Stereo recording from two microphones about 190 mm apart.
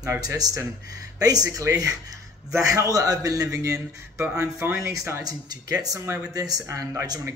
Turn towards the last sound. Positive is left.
turn(degrees=-15)  # may be behind; listen again after turning